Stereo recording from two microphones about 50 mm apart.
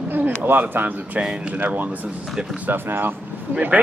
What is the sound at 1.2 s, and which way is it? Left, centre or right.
Speech, centre.